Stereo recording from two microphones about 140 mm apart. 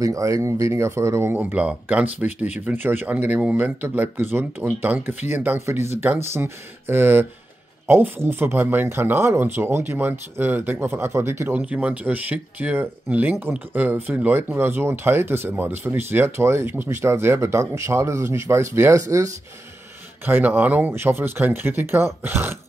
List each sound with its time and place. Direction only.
0.0 s speech: 25° right (ahead or behind)